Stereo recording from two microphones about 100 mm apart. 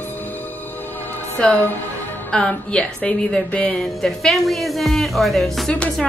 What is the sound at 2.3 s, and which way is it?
A woman's voice, 10° left (ahead or behind).